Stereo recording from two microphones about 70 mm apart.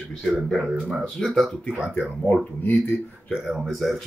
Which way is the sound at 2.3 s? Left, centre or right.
Left.